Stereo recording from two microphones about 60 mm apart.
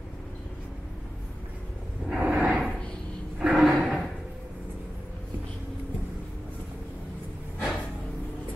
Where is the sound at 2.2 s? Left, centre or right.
Centre.